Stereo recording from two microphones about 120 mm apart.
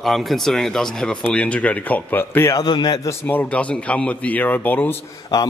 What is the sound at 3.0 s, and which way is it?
Speech, 20° left (ahead or behind).